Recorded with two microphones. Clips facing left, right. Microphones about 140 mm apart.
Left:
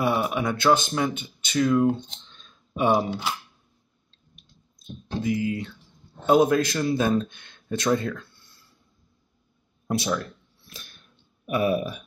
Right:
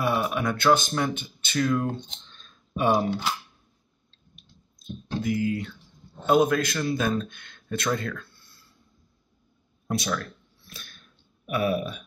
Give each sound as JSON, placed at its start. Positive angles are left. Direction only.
{"t": 0.0, "sound": "speech", "side_deg": 20}
{"t": 5.2, "sound": "speech", "side_deg": 20}
{"t": 9.8, "sound": "speech", "side_deg": 20}
{"t": 11.0, "sound": "a sound", "side_deg": 20}